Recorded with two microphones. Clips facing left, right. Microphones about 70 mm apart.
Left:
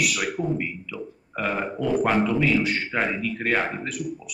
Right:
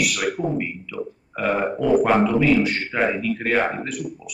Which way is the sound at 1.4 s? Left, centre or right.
Centre.